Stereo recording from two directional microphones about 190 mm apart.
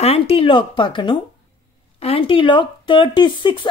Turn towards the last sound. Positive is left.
turn(degrees=25)  # may be behind; listen again after turning